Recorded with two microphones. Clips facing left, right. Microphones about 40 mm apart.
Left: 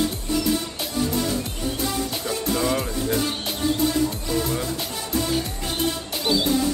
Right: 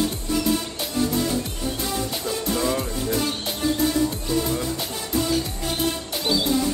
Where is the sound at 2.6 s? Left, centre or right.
Centre.